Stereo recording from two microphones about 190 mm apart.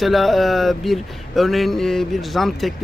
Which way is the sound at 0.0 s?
Centre (ahead or behind).